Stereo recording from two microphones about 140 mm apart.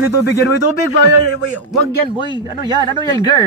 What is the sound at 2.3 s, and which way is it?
Speech, 30° right (ahead or behind).